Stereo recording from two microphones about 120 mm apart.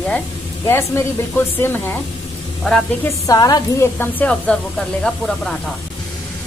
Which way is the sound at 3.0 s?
30° left (ahead or behind).